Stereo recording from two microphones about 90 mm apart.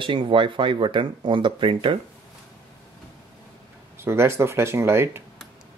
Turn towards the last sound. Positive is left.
turn(degrees=-30)  # may be behind; listen again after turning